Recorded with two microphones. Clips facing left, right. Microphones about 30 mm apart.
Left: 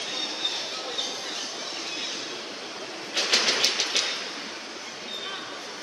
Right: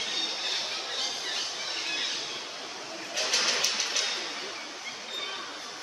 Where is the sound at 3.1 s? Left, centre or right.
Left.